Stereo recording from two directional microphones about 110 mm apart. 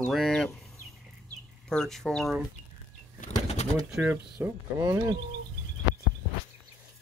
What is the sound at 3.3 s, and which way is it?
Bird, 80° left.